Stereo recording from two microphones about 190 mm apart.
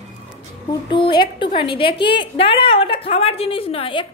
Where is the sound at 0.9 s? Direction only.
25° left (ahead or behind).